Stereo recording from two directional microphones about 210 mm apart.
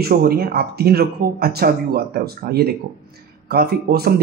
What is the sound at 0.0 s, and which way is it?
Speech, 45° right (ahead or behind).